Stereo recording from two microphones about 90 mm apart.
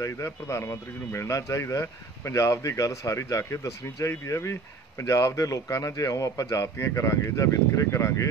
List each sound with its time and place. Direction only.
0.0 s a man's voice: 35° left (ahead or behind)